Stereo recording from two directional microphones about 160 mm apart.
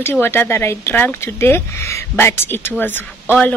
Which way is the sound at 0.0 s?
15° left (ahead or behind).